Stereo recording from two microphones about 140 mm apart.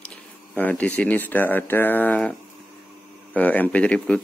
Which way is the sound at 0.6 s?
10° left (ahead or behind).